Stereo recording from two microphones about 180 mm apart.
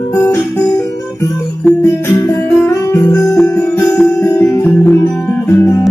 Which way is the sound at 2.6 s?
15° left (ahead or behind).